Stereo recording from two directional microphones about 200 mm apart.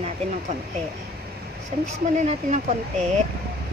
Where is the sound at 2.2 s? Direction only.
35° right (ahead or behind).